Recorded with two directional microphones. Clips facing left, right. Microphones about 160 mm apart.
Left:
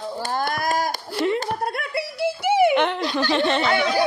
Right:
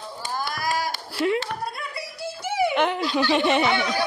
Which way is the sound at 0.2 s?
55° left (ahead or behind).